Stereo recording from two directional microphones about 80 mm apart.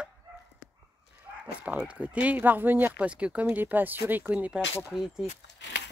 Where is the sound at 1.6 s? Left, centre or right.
Centre.